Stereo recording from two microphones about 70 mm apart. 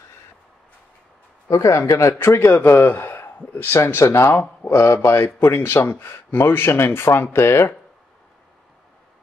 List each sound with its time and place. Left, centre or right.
1.5 s a man's voice: left
4.4 s speech: left
4.7 s a man's voice: left